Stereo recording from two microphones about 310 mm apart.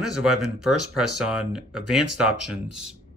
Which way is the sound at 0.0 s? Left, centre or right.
Centre.